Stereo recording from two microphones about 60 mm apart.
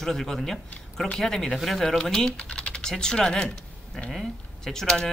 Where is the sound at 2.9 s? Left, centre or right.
Centre.